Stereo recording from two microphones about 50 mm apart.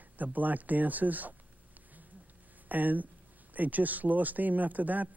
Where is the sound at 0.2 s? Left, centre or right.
Right.